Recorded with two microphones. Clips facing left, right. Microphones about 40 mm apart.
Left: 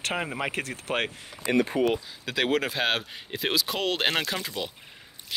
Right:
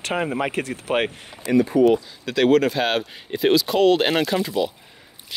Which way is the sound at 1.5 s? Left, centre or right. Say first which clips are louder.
Right 6 dB; left.